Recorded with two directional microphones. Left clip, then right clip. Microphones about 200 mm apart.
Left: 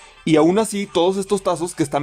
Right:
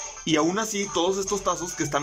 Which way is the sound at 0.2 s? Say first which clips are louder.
Left 8 dB; 20° left (ahead or behind).